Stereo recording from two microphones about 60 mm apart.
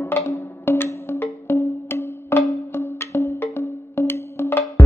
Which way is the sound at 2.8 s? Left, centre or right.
Left.